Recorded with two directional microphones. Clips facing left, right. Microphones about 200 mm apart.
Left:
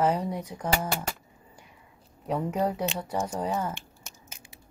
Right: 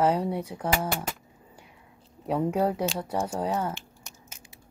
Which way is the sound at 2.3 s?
10° right (ahead or behind).